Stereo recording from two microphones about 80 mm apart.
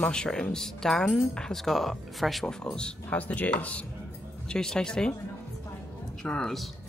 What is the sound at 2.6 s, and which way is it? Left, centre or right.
Speech, centre.